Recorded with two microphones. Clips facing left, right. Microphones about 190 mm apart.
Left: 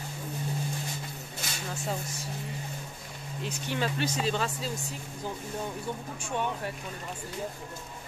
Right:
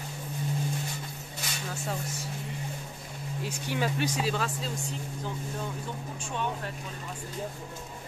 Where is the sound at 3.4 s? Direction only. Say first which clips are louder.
Even; 10° right (ahead or behind).